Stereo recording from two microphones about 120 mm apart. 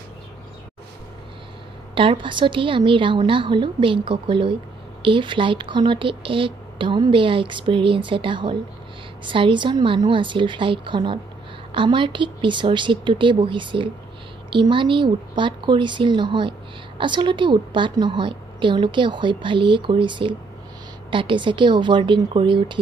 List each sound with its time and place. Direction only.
2.0 s speech: 45° right (ahead or behind)